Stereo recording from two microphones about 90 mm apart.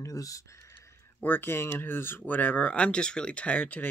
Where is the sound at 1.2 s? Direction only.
20° left (ahead or behind).